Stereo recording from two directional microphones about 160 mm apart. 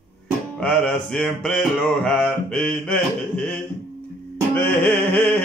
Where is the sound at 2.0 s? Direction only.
5° left (ahead or behind).